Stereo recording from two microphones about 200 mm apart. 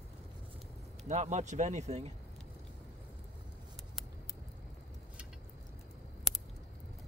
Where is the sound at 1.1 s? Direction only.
35° right (ahead or behind).